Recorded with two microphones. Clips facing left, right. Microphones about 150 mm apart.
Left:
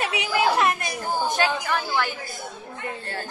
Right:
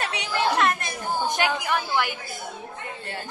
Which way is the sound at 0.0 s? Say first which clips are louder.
Left 3 dB; 5° left (ahead or behind).